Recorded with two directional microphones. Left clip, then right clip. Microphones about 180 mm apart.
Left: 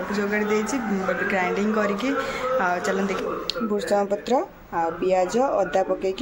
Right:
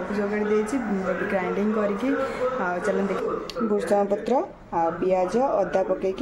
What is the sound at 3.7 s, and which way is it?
Speech, centre (ahead or behind).